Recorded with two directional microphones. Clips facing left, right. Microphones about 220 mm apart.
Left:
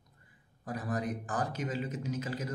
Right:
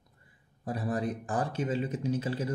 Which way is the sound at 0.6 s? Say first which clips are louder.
Right 3 dB; 30° right (ahead or behind).